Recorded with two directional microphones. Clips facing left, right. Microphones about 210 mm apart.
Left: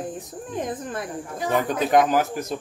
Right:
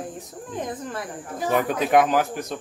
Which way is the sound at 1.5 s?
5° right (ahead or behind).